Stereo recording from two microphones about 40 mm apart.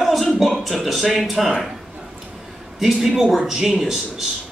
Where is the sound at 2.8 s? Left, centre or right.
Centre.